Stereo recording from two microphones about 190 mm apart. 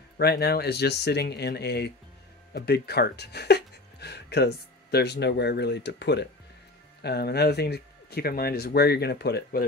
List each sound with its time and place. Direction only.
0.2 s speech: 55° left (ahead or behind)